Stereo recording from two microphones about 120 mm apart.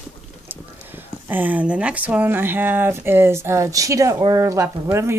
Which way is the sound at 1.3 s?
15° right (ahead or behind).